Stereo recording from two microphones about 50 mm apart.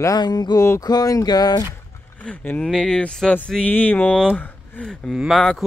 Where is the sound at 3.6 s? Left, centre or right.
Left.